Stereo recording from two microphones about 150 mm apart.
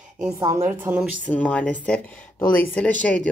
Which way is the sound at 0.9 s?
20° right (ahead or behind).